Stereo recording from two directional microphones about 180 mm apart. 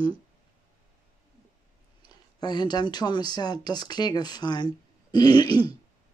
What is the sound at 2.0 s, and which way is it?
Speech, 25° left (ahead or behind).